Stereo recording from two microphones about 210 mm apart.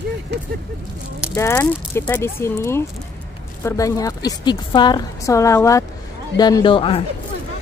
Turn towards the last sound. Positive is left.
turn(degrees=25)  # may be behind; listen again after turning